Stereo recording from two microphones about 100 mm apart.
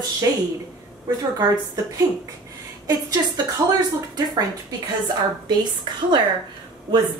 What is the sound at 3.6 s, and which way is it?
A woman's voice, 45° right (ahead or behind).